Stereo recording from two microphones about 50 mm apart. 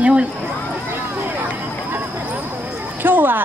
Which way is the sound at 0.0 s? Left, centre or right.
Right.